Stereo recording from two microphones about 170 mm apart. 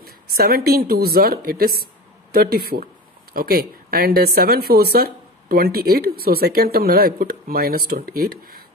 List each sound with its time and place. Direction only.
0.0 s speech: 60° right (ahead or behind)